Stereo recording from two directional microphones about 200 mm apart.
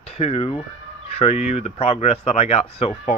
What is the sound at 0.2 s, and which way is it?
Speech, 30° left (ahead or behind).